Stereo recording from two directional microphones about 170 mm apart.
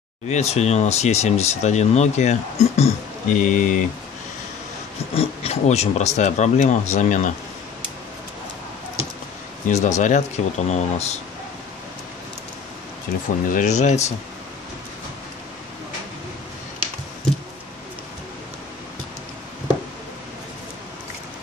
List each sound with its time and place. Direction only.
0.3 s speech: 40° left (ahead or behind)
5.1 s speech: 35° left (ahead or behind)
9.7 s speech: 40° left (ahead or behind)
13.5 s speech: 45° left (ahead or behind)